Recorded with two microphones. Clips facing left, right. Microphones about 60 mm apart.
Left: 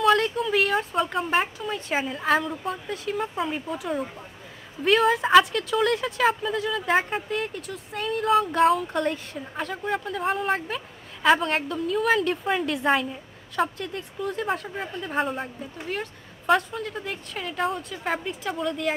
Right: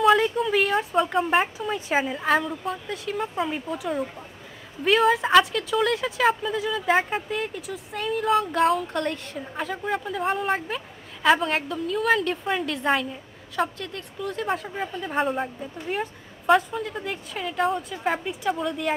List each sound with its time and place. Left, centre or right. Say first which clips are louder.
0.0 s a woman's voice: right 2 dB; centre